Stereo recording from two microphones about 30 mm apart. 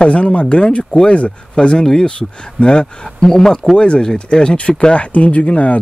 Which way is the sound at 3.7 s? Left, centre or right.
Left.